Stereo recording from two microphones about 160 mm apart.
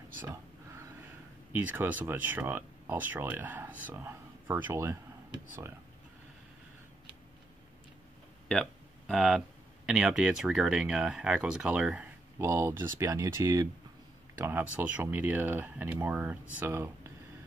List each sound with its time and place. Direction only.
1.5 s speech: 10° right (ahead or behind)
8.5 s a sound: centre (ahead or behind)
9.8 s speech: centre (ahead or behind)